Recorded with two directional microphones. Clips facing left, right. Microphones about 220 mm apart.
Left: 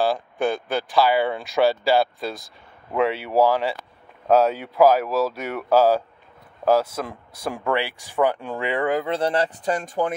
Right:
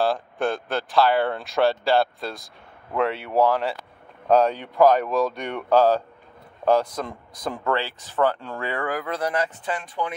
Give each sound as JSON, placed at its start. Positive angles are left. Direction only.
{"t": 0.0, "sound": "speech", "side_deg": 0}